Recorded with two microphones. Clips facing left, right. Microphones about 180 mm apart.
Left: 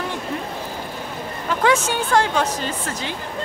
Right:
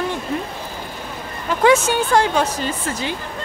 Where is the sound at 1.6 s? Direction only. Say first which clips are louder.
Right 5 dB; 10° right (ahead or behind).